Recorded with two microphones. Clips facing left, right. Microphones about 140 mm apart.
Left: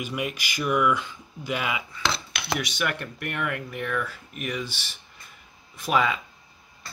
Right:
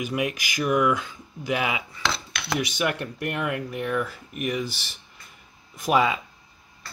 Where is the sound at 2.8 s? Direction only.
15° right (ahead or behind).